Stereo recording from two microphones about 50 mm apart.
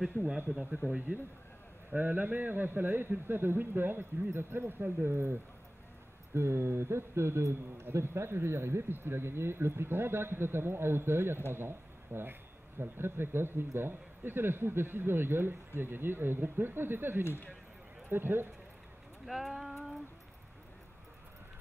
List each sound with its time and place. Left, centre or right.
0.8 s speech: right
6.3 s a man's voice: right
19.2 s a sound: centre